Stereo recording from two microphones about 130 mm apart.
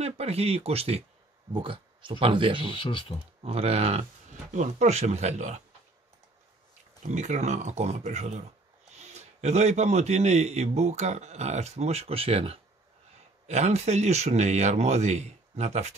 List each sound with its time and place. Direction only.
0.0 s speech: 55° right (ahead or behind)
1.5 s speech: 40° right (ahead or behind)
2.8 s speech: 40° left (ahead or behind)
3.4 s a man's voice: 50° right (ahead or behind)
7.1 s a man's voice: 65° right (ahead or behind); by 12.5 s 50° right (ahead or behind)
13.5 s a man's voice: 60° right (ahead or behind)